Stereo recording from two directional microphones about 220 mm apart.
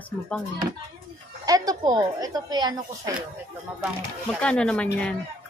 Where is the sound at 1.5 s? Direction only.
20° right (ahead or behind).